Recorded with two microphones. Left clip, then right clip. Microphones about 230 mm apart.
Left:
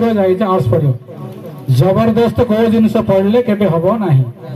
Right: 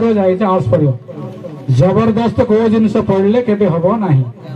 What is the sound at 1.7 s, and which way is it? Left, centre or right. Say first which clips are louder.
A man's voice: left 1 dB; left.